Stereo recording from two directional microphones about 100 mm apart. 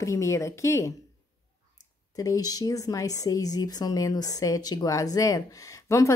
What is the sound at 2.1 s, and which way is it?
Speech, 35° left (ahead or behind).